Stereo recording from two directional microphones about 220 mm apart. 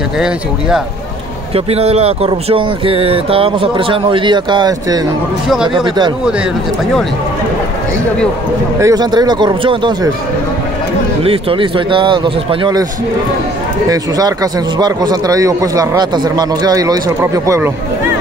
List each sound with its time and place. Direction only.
1.5 s speech: 25° right (ahead or behind)
5.5 s speech: centre (ahead or behind)
8.8 s speech: 15° right (ahead or behind)
11.2 s speech: 25° right (ahead or behind)
13.8 s a man's voice: 15° right (ahead or behind)